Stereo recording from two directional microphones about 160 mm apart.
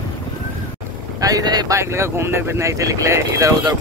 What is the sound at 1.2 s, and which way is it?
Speech, 25° right (ahead or behind).